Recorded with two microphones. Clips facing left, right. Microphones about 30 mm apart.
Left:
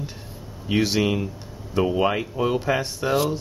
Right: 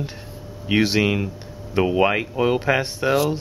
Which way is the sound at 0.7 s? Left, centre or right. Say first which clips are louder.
Right 2 dB; centre.